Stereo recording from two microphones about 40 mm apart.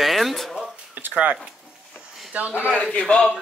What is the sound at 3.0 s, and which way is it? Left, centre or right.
Speech, left.